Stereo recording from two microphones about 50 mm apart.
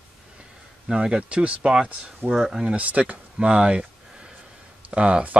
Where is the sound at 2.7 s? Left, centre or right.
Right.